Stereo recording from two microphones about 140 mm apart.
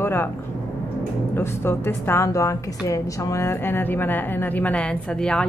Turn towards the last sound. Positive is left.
turn(degrees=5)  # may be behind; listen again after turning